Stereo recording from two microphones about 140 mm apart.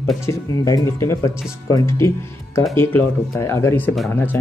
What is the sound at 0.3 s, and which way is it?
Speech, 20° left (ahead or behind).